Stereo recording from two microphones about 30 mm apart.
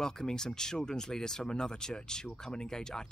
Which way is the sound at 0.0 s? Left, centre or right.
Left.